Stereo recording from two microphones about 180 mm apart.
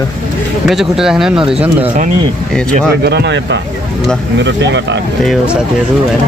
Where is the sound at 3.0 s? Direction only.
70° right (ahead or behind).